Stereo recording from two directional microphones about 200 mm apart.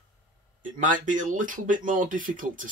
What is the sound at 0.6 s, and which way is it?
Speech, 40° right (ahead or behind).